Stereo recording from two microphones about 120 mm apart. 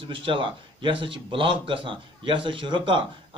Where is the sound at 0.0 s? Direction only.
45° right (ahead or behind).